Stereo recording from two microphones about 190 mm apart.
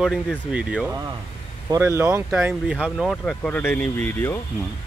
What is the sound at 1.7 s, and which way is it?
Speech, 15° right (ahead or behind).